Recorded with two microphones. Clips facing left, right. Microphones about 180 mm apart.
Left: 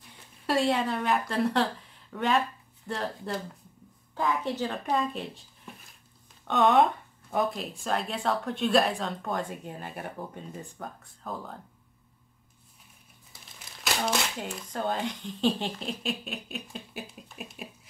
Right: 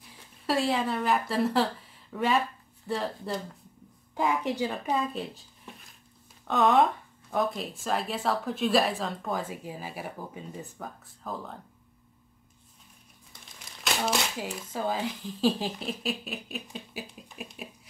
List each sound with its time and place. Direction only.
0.1 s speech: centre (ahead or behind)
4.1 s speech: 15° right (ahead or behind)
6.4 s speech: centre (ahead or behind)
13.3 s speech: centre (ahead or behind)
16.7 s a sound: centre (ahead or behind)